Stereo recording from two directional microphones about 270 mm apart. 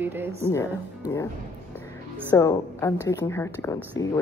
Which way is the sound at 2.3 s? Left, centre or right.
Centre.